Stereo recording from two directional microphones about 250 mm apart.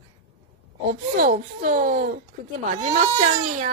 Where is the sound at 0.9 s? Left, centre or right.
Right.